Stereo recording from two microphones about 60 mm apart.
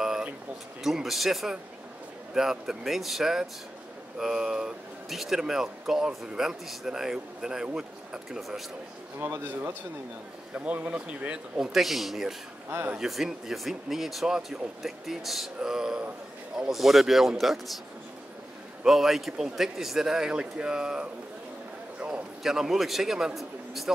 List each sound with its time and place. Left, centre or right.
0.8 s speech: centre
8.4 s speech: centre
9.2 s speech: right
10.5 s speech: right; by 17.6 s centre
18.9 s speech: centre
22.0 s a sound: right
22.4 s speech: centre